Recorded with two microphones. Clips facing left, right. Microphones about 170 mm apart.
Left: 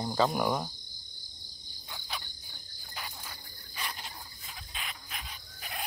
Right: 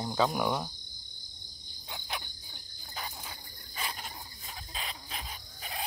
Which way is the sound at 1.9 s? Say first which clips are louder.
Right 2 dB; 20° right (ahead or behind).